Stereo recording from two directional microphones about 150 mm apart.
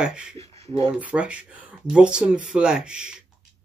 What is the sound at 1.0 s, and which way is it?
Speech, 5° right (ahead or behind).